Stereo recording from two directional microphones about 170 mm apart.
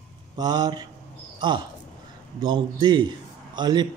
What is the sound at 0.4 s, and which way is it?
Speech, 25° right (ahead or behind).